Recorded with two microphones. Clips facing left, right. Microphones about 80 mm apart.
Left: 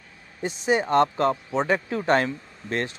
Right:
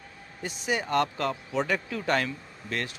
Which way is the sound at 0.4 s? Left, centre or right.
Left.